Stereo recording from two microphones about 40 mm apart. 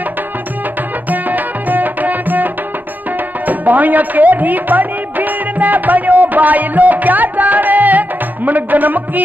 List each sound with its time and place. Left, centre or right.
1.1 s music: right